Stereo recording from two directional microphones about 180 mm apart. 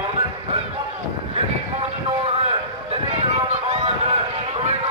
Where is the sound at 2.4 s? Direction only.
35° right (ahead or behind).